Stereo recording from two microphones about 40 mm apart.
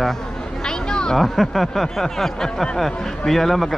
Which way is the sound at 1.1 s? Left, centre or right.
Centre.